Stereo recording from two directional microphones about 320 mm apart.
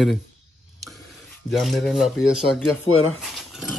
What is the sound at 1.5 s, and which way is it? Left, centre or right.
Speech, centre.